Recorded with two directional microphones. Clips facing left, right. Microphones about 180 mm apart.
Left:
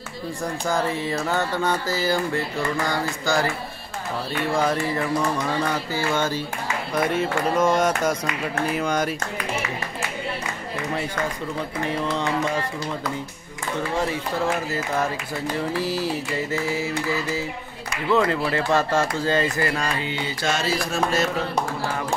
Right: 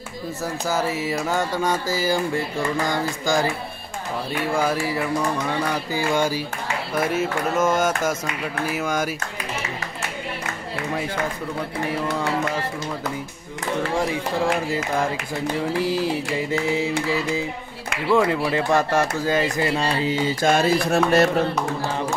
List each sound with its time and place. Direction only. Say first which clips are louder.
0.7 s music: even; 5° right (ahead or behind)
7.0 s speech: even; 5° right (ahead or behind)
13.9 s music: even; 15° right (ahead or behind)
19.7 s mantra: right 4 dB; 30° right (ahead or behind)
20.4 s a sound: right 5 dB; 55° right (ahead or behind)